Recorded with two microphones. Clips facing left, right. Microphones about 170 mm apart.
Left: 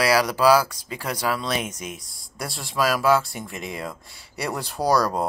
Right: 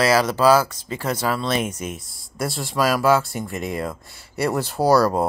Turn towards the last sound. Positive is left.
turn(degrees=-5)  # may be behind; listen again after turning